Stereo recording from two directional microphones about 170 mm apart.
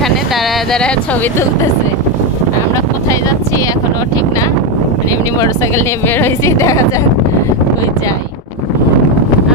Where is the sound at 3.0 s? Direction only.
20° left (ahead or behind).